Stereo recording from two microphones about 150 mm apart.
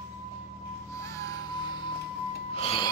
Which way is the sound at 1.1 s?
25° left (ahead or behind).